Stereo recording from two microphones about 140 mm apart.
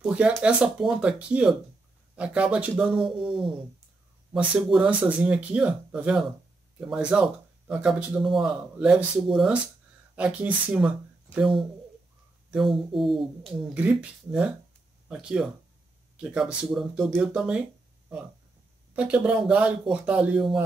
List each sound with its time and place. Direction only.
0.0 s speech: 10° right (ahead or behind)
18.9 s speech: 10° right (ahead or behind)